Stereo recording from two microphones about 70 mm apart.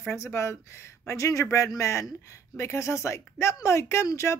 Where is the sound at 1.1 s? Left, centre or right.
Left.